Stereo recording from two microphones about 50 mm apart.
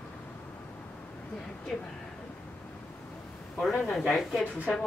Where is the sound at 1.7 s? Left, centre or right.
Centre.